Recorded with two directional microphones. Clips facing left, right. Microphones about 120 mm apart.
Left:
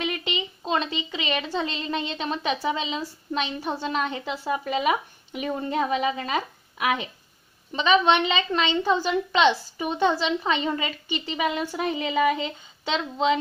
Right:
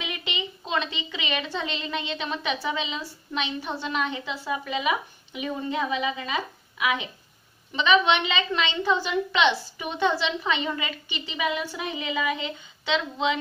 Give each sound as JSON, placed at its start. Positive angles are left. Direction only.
{"t": 0.0, "sound": "a woman's voice", "side_deg": 45}